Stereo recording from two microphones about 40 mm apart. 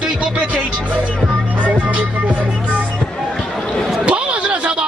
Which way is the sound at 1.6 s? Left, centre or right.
Right.